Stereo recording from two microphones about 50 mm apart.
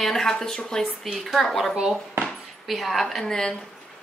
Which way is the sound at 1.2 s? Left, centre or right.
Centre.